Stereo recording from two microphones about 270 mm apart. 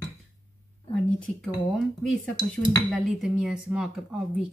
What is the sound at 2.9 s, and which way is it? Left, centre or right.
A woman's voice, centre.